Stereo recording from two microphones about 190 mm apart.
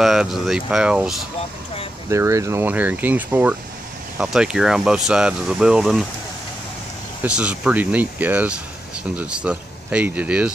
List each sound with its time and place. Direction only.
0.0 s speech: centre (ahead or behind)
2.0 s speech: 15° right (ahead or behind)
7.2 s speech: 5° right (ahead or behind)